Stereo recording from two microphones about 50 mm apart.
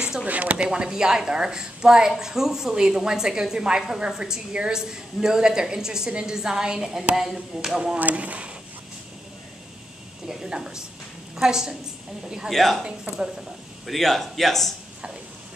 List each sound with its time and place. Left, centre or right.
0.0 s a sound: centre
0.3 s speech: right
0.7 s a woman's voice: centre
8.0 s speech: right
10.2 s a woman's voice: centre
12.4 s a man's voice: centre
13.8 s a man's voice: centre